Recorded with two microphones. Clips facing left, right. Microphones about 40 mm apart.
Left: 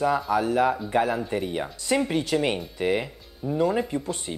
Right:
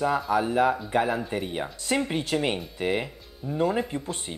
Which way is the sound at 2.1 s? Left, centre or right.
Right.